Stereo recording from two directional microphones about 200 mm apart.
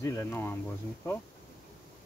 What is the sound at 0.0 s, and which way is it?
Speech, 15° left (ahead or behind).